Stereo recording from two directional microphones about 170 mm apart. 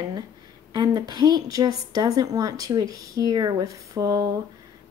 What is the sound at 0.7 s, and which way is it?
A woman's voice, 25° right (ahead or behind).